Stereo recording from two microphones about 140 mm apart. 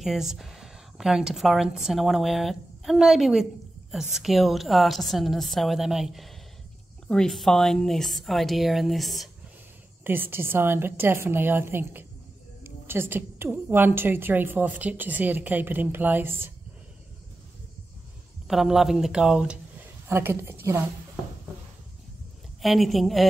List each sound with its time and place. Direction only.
0.0 s a woman's voice: centre (ahead or behind)
10.0 s a woman's voice: 15° right (ahead or behind)
18.5 s a woman's voice: centre (ahead or behind)
20.1 s a woman's voice: 15° right (ahead or behind)
22.6 s a woman's voice: centre (ahead or behind)